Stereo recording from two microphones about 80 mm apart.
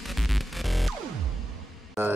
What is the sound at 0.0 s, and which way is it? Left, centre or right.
Music, centre.